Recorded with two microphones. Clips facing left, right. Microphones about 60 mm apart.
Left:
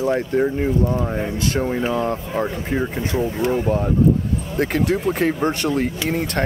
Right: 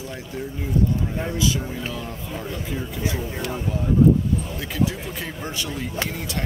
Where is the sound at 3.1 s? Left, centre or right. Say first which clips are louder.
Left 8 dB; left.